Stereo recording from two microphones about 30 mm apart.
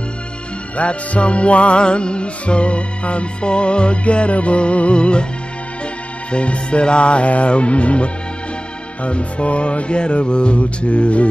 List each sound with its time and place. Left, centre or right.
0.7 s music: left
6.3 s music: left